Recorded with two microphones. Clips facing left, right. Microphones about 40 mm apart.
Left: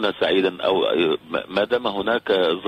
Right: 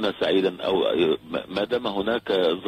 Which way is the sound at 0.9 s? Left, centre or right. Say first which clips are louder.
Left 2 dB; left.